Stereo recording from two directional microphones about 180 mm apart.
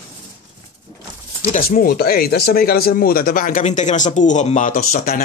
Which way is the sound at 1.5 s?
55° left (ahead or behind).